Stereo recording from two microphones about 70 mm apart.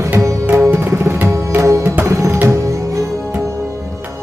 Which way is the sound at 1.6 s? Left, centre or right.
Right.